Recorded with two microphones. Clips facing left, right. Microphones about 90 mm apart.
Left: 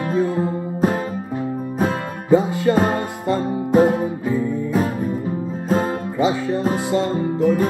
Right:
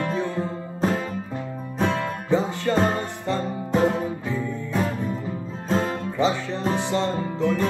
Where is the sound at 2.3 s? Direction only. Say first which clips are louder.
Left 6 dB; 10° left (ahead or behind).